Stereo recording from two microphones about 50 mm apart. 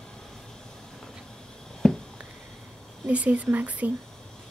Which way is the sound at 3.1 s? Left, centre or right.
Right.